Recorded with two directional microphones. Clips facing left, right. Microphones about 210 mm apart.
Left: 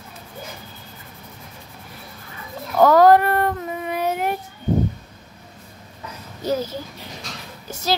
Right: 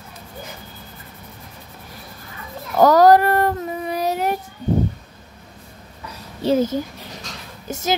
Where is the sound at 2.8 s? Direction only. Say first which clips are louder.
Right 1 dB; 40° right (ahead or behind).